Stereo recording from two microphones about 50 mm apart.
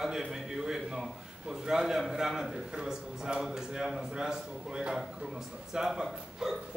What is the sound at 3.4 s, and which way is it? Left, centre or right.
Speech, centre.